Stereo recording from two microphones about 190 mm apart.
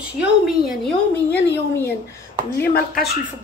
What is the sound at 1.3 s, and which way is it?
Speech, 10° left (ahead or behind).